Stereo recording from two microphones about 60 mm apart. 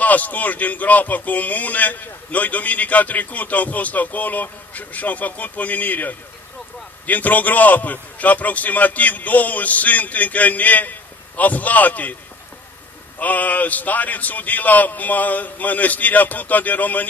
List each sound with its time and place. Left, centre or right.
0.0 s speech: left
13.2 s speech: left